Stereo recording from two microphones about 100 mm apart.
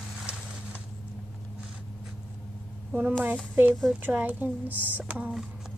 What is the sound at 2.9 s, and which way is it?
Speech, 10° right (ahead or behind).